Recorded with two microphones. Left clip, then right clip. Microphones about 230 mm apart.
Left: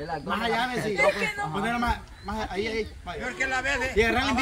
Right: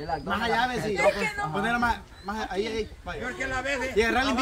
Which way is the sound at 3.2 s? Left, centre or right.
Left.